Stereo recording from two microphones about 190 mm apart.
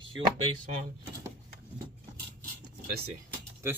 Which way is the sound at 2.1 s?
55° right (ahead or behind).